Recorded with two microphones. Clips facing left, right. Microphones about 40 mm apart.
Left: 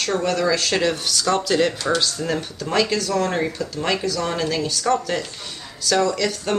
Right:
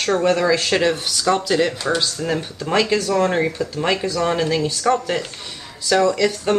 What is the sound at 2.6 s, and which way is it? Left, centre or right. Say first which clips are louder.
Speech: right 3 dB; right.